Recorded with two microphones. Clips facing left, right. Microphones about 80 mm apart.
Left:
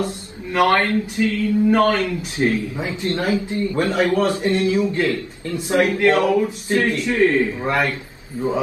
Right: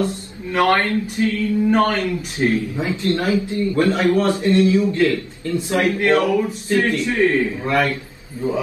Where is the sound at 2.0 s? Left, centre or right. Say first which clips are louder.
Even; left.